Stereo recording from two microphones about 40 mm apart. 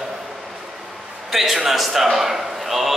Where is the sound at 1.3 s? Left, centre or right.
Centre.